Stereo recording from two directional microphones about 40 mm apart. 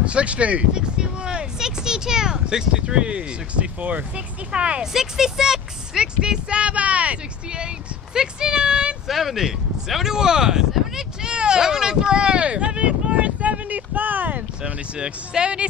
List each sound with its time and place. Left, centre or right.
0.0 s speech: right
0.7 s speech: right
4.9 s speech: centre; by 7.2 s right
7.5 s speech: right
9.0 s speech: centre; by 14.4 s right
14.6 s speech: right